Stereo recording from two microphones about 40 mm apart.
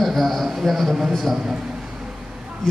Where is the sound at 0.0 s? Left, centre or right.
Centre.